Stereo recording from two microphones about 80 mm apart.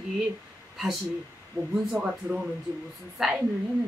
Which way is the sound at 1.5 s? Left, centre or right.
Right.